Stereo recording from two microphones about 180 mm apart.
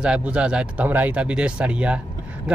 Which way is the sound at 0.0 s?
5° right (ahead or behind).